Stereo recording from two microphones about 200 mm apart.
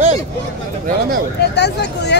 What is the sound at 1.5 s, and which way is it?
Speech, 60° left (ahead or behind).